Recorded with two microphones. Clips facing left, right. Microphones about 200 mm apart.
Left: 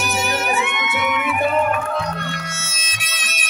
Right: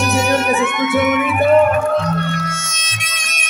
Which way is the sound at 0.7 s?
50° right (ahead or behind).